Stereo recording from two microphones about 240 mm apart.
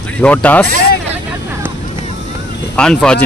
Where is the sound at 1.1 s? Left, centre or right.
Centre.